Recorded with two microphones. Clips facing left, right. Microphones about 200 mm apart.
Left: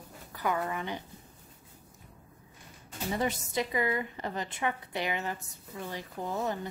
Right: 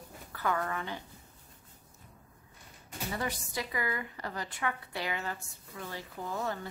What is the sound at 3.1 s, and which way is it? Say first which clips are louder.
A woman's voice: left 5 dB; 20° left (ahead or behind).